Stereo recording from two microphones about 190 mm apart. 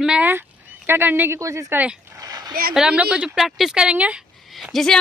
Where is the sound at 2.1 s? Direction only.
20° right (ahead or behind).